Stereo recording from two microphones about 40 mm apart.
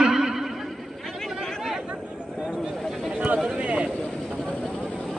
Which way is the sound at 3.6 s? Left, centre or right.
Right.